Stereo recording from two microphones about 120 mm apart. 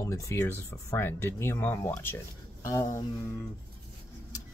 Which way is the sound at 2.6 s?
25° left (ahead or behind).